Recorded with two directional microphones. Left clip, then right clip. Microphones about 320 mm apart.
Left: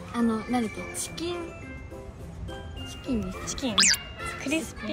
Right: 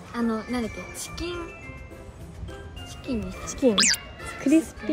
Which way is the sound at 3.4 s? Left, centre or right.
Right.